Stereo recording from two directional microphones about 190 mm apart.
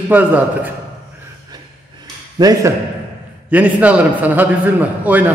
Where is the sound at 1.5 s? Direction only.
20° right (ahead or behind).